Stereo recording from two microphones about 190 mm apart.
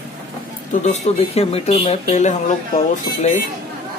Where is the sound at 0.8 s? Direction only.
35° left (ahead or behind).